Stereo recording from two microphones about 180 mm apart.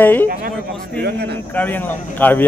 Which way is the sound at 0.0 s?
10° left (ahead or behind).